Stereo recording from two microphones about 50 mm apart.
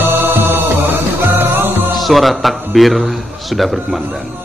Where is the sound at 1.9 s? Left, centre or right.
Centre.